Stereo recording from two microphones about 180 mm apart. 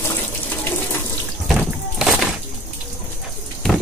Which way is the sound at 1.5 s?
5° right (ahead or behind).